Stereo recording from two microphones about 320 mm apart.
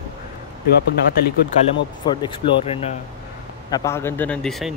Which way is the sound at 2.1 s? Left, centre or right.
Centre.